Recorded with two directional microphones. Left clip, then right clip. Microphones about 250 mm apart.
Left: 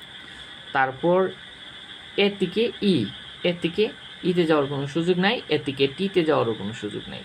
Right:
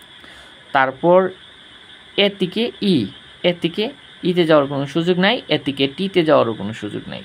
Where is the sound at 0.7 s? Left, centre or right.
Right.